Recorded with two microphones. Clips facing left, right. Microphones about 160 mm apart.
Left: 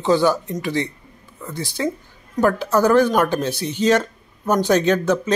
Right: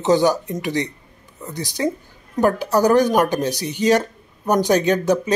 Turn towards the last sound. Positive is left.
turn(degrees=-15)  # may be behind; listen again after turning